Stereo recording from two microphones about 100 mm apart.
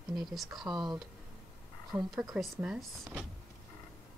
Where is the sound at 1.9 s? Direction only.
15° right (ahead or behind).